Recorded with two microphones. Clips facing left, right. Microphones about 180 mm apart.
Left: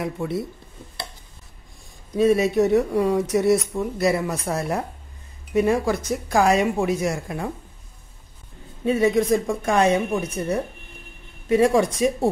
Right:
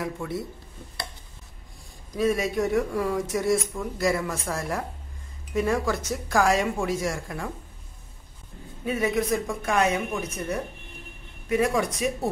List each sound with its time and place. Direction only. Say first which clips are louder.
2.1 s speech: left 6 dB; 25° left (ahead or behind)
8.8 s speech: left 6 dB; 30° left (ahead or behind)